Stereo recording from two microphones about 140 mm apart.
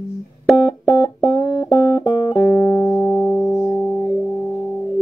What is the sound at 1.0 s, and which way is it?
Music, 30° left (ahead or behind).